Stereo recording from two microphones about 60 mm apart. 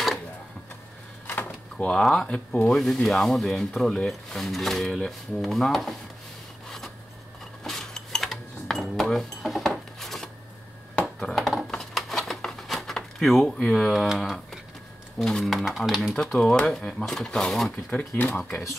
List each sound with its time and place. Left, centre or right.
1.2 s a sound: left
2.0 s speech: centre
7.6 s a sound: centre
13.6 s speech: centre
16.2 s speech: centre
18.1 s speech: left
18.4 s speech: centre